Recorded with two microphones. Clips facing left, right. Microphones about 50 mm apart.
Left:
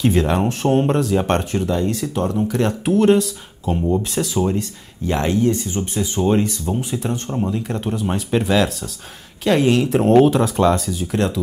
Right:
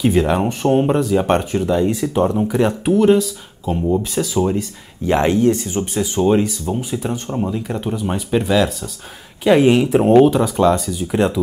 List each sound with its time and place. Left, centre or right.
0.0 s speech: centre
2.9 s speech: centre
4.6 s speech: right
5.9 s speech: centre
9.4 s speech: centre
11.1 s speech: centre